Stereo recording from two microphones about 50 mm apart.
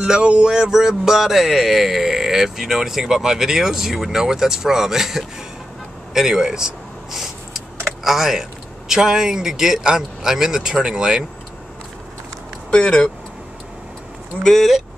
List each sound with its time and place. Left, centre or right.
0.0 s speech: centre
6.1 s a sound: centre
8.0 s speech: centre
12.7 s speech: centre
14.4 s speech: centre